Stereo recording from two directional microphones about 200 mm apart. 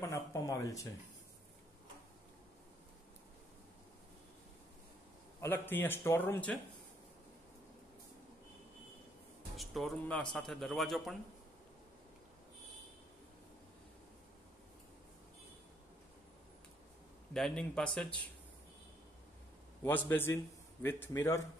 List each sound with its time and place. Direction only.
0.1 s speech: 15° left (ahead or behind)
5.4 s speech: 10° left (ahead or behind)
9.6 s a man's voice: centre (ahead or behind)
17.3 s a man's voice: 5° left (ahead or behind)
19.8 s speech: 10° left (ahead or behind)